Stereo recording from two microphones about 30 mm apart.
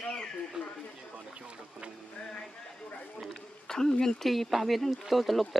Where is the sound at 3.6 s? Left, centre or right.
Centre.